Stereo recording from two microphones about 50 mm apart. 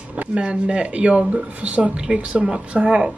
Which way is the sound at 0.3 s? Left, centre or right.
Centre.